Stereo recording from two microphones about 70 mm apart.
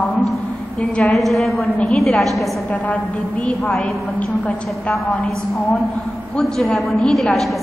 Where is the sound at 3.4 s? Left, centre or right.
Centre.